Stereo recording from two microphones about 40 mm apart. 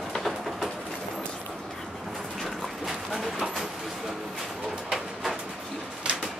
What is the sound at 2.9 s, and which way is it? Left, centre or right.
Dog, centre.